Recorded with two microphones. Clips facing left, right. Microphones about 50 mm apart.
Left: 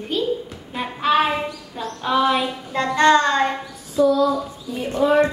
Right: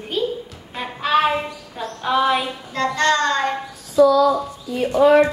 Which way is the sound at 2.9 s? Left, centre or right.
Centre.